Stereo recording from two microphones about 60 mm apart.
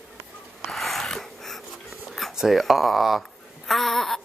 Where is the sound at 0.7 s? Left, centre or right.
Centre.